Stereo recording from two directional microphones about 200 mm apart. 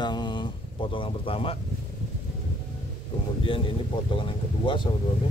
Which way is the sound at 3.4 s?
25° left (ahead or behind).